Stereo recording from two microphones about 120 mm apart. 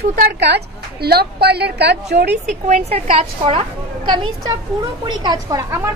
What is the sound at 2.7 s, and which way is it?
Speech, 55° right (ahead or behind).